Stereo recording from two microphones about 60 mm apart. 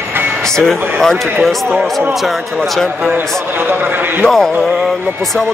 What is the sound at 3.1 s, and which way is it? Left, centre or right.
A man's voice, right.